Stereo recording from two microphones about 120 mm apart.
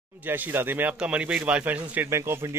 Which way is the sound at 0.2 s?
15° right (ahead or behind).